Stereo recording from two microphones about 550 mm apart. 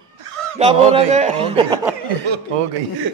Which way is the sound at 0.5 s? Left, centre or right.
Centre.